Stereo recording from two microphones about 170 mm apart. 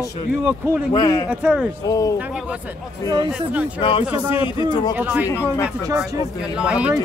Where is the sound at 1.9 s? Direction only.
20° left (ahead or behind).